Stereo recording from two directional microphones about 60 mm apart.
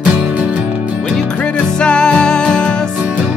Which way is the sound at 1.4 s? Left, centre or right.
Centre.